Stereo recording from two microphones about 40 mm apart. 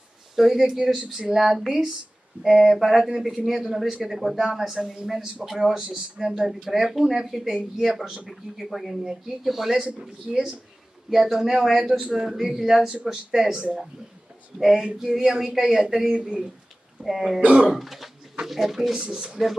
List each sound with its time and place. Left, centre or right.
0.4 s speech: centre
2.6 s speech: centre
3.1 s speech: centre
5.8 s speech: right
6.7 s speech: centre
9.8 s speech: right
11.1 s speech: centre
12.9 s speech: centre
14.5 s speech: centre
16.2 s speech: right
17.0 s speech: centre
17.4 s speech: right
17.6 s speech: centre